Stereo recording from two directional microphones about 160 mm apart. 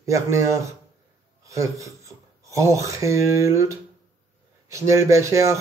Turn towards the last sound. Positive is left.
turn(degrees=-20)  # may be behind; listen again after turning